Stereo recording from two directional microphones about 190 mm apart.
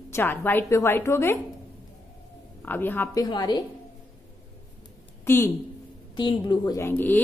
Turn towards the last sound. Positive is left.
turn(degrees=10)  # may be behind; listen again after turning